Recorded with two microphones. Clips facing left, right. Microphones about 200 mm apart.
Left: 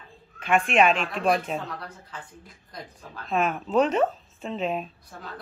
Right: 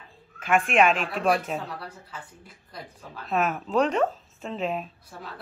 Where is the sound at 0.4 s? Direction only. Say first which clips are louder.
Even; centre (ahead or behind).